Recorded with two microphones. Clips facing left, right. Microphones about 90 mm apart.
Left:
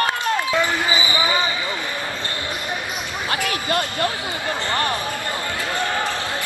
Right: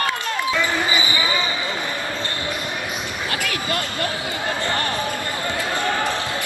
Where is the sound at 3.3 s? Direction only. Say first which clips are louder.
Left 3 dB; 30° left (ahead or behind).